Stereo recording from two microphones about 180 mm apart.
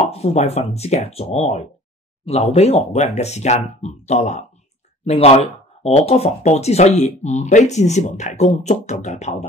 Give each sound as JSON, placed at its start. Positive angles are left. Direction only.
{"t": 0.1, "sound": "speech", "side_deg": 35}